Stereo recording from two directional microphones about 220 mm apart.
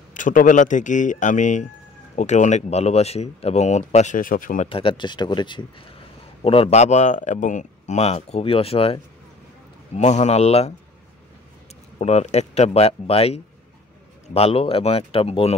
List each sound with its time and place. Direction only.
0.1 s speech: 35° left (ahead or behind)
4.6 s speech: 25° left (ahead or behind)
12.0 s speech: 30° left (ahead or behind)